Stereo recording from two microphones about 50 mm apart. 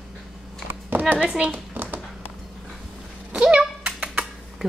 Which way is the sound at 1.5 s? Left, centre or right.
Right.